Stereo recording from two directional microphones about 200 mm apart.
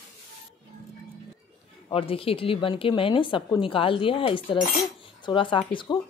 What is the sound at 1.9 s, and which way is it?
Speech, 25° left (ahead or behind).